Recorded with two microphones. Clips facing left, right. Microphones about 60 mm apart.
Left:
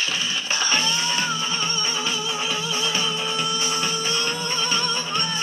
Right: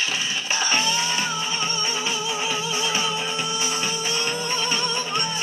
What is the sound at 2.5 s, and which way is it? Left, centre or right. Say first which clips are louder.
Music: even; right.